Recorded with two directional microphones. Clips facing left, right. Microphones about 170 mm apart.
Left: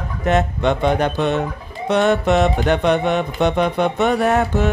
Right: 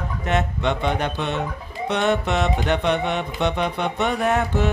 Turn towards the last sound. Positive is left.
turn(degrees=45)  # may be behind; listen again after turning